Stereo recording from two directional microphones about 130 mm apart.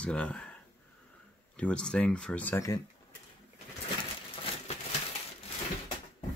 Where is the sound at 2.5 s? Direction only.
25° left (ahead or behind).